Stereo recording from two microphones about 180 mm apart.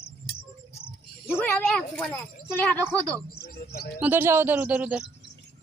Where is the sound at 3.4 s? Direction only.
60° left (ahead or behind).